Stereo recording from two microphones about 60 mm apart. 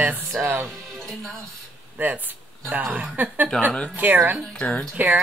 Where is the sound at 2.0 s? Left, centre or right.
Right.